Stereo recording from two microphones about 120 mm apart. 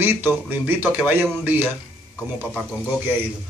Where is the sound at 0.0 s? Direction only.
15° right (ahead or behind).